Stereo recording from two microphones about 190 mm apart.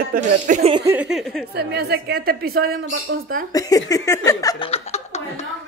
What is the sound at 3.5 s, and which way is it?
Speech, 20° left (ahead or behind).